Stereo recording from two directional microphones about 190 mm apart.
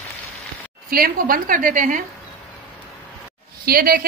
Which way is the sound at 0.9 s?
50° right (ahead or behind).